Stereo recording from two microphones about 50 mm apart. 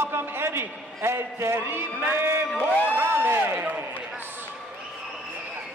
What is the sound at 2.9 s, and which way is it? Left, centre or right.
Speech, right.